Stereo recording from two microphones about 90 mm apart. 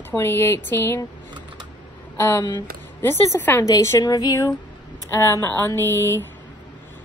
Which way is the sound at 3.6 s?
35° left (ahead or behind).